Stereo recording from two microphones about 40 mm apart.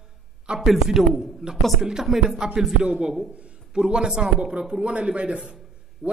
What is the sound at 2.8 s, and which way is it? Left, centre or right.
Speech, right.